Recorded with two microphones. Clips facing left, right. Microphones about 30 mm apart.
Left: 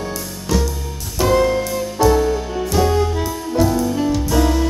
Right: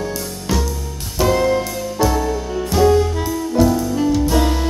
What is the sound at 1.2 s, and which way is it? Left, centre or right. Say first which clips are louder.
Music: even; centre.